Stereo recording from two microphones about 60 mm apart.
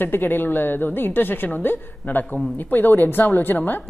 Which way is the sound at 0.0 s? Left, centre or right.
Left.